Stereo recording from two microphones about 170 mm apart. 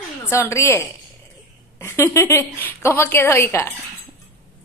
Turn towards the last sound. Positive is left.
turn(degrees=15)  # may be behind; listen again after turning